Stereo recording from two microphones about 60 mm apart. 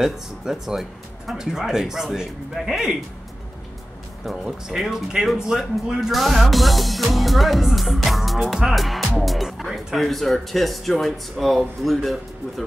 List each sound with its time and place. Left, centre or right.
0.0 s speech: centre
4.3 s speech: centre